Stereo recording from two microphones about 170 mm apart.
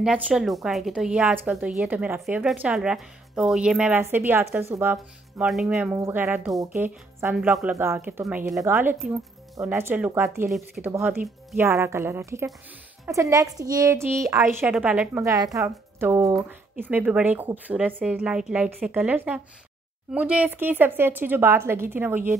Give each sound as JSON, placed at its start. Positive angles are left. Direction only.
{"t": 0.0, "sound": "speech", "side_deg": -5}
{"t": 4.9, "sound": "speech", "side_deg": 0}
{"t": 5.9, "sound": "speech", "side_deg": -15}
{"t": 7.7, "sound": "speech", "side_deg": -15}
{"t": 15.3, "sound": "speech", "side_deg": -20}